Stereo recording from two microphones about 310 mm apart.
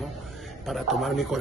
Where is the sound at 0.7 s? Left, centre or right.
Centre.